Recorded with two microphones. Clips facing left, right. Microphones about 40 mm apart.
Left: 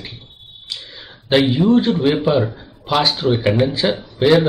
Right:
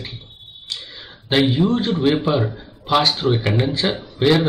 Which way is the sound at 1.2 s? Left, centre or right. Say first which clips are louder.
Left 3 dB; centre.